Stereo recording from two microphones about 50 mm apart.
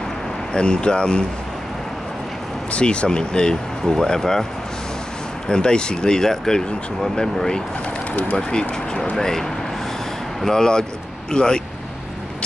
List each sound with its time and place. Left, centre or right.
0.5 s speech: centre
2.7 s speech: left
5.5 s speech: centre